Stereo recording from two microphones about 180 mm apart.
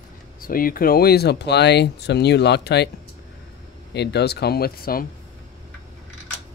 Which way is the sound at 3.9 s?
65° left (ahead or behind).